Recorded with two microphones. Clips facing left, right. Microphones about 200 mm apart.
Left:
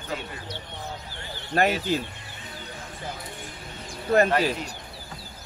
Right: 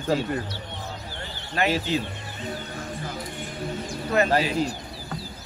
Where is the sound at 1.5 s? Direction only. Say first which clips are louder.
Left 3 dB; 45° left (ahead or behind).